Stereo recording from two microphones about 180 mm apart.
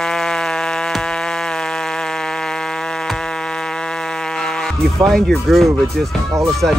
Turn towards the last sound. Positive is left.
turn(degrees=0)  # may be behind; listen again after turning